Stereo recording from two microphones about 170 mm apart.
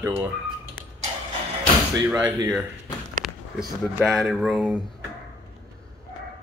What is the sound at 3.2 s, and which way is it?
Speech, centre (ahead or behind).